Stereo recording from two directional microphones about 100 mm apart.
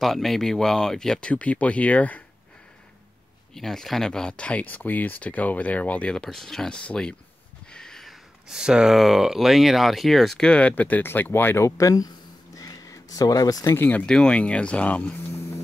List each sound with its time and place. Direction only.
0.0 s speech: centre (ahead or behind)
3.5 s speech: 5° left (ahead or behind); by 12.1 s 35° left (ahead or behind)
12.5 s a sound: 40° left (ahead or behind)
13.7 s speech: 15° left (ahead or behind)